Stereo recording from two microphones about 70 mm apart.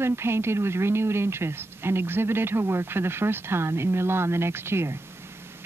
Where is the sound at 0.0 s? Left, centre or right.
Right.